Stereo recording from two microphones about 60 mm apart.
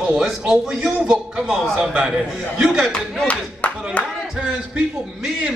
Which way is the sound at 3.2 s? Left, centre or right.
Left.